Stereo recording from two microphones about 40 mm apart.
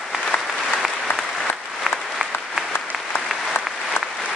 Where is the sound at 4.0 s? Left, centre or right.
Left.